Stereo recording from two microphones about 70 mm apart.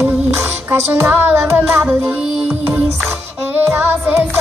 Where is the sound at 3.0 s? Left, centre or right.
Right.